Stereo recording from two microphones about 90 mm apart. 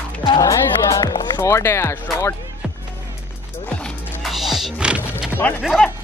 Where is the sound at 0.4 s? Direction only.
40° left (ahead or behind).